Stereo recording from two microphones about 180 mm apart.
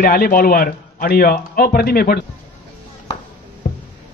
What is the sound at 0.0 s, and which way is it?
Speech, 55° left (ahead or behind).